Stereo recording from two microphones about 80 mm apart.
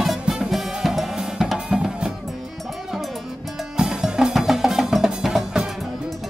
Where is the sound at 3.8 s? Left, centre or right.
Centre.